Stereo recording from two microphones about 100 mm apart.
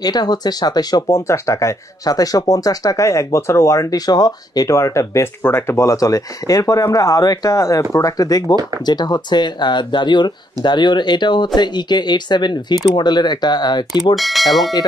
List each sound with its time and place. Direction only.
0.0 s speech: 40° left (ahead or behind)
14.1 s speech: centre (ahead or behind)